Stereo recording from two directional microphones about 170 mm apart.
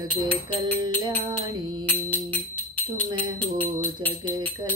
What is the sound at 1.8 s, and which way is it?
Music, 10° left (ahead or behind).